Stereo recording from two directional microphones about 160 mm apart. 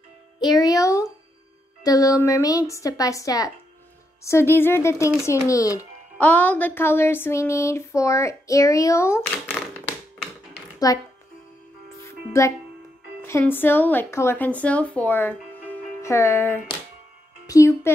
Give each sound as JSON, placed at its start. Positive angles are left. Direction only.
{"t": 0.4, "sound": "music", "side_deg": 20}
{"t": 1.8, "sound": "a woman's voice", "side_deg": 20}
{"t": 6.1, "sound": "a sound", "side_deg": 10}
{"t": 10.9, "sound": "a woman's voice", "side_deg": 20}
{"t": 12.0, "sound": "music", "side_deg": 20}
{"t": 13.2, "sound": "a woman's voice", "side_deg": 15}